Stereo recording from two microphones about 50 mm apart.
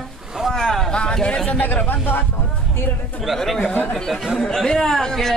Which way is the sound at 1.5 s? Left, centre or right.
Left.